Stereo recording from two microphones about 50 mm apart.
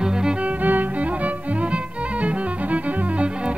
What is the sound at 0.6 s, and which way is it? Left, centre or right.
Music, right.